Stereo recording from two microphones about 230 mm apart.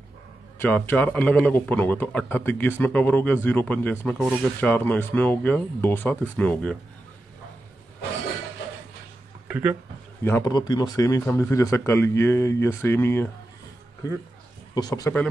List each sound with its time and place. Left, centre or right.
0.6 s speech: centre
9.5 s speech: centre
10.2 s speech: centre
14.7 s speech: centre